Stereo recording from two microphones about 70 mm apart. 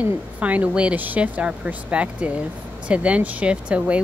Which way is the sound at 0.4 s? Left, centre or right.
Right.